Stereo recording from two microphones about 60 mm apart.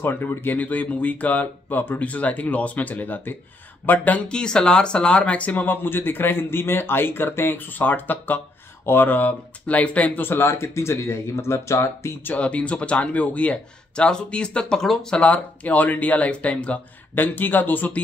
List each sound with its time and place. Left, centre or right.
0.0 s speech: left
0.6 s speech: left
4.3 s speech: centre
10.2 s speech: left
12.4 s speech: left
15.2 s speech: left
17.1 s speech: left